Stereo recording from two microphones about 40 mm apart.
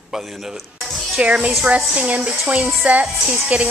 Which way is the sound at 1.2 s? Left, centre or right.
Right.